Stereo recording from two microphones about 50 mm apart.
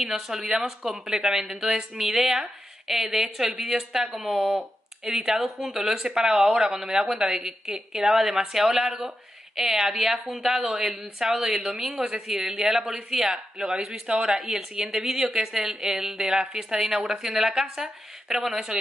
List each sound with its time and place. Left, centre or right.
0.0 s a woman's voice: centre
6.5 s a woman's voice: centre